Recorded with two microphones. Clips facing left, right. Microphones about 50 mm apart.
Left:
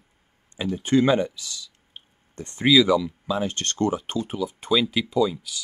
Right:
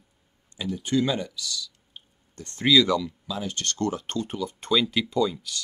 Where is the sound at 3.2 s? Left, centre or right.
Left.